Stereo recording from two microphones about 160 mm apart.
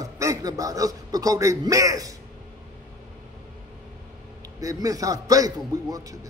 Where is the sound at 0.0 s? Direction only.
20° right (ahead or behind).